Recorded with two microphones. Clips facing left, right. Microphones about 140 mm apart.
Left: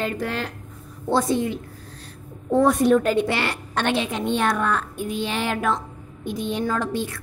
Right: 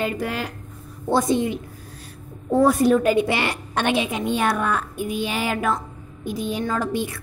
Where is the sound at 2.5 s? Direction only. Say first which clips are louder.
Even; 5° right (ahead or behind).